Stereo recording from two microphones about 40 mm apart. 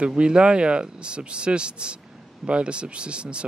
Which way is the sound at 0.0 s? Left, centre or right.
Right.